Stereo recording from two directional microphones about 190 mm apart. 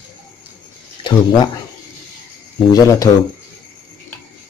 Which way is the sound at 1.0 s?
20° left (ahead or behind).